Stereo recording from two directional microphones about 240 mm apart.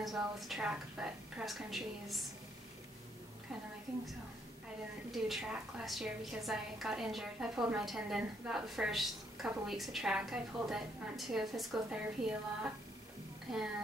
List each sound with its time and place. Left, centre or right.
0.0 s a woman's voice: centre
5.1 s a woman's voice: centre